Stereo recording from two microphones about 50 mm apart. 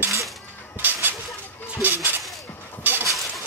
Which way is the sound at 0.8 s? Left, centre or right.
Right.